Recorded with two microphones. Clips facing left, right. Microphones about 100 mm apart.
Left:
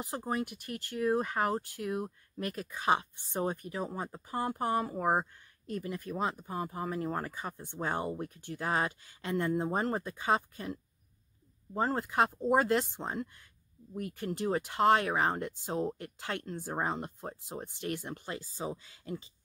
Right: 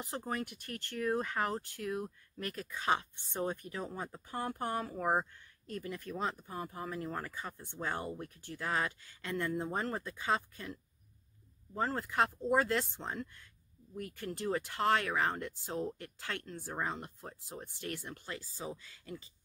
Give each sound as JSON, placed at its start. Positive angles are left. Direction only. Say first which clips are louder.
{"t": 0.0, "sound": "speech", "louder": "left 4 dB", "side_deg": 15}